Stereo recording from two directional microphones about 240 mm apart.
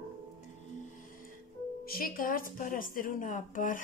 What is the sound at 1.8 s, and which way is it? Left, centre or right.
Speech, left.